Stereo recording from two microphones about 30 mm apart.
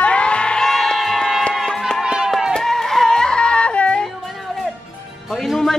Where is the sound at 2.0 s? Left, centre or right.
Right.